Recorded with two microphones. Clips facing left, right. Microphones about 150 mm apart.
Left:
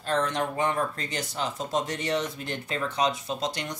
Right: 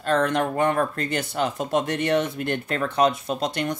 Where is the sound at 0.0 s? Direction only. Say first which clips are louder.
Right 5 dB; 60° right (ahead or behind).